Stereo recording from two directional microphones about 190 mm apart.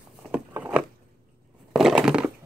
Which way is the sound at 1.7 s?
Centre (ahead or behind).